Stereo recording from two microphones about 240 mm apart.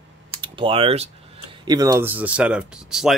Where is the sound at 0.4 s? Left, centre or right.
Right.